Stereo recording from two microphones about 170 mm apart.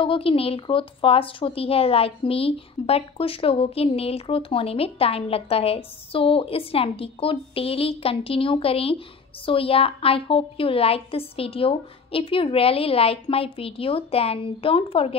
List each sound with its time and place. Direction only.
0.0 s a woman's voice: 30° left (ahead or behind)